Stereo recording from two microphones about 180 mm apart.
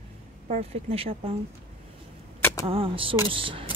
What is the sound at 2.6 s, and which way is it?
Speech, 30° right (ahead or behind).